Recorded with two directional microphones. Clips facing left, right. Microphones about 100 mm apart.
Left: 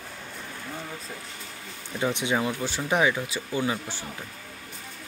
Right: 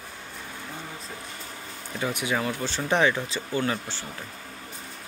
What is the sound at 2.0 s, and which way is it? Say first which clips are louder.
Speech: left 2 dB; 25° left (ahead or behind).